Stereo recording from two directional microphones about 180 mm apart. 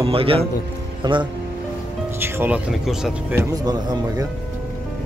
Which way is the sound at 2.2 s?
10° right (ahead or behind).